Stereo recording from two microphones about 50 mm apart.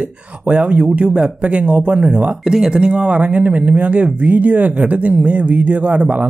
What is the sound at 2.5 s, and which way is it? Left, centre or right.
Speech, centre.